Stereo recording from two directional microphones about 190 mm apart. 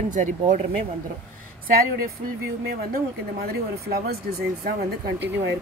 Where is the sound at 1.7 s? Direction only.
50° right (ahead or behind).